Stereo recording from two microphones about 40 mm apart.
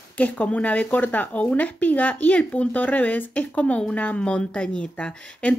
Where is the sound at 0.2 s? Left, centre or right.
Left.